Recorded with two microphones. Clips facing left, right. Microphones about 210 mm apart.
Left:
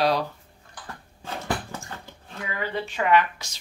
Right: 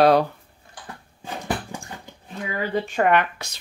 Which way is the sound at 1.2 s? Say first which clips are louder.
Right 1 dB; 15° right (ahead or behind).